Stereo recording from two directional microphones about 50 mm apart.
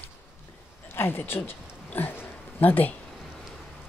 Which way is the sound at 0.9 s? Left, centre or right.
Left.